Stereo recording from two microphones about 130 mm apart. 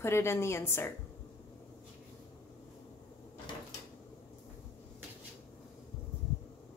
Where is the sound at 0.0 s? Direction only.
20° left (ahead or behind).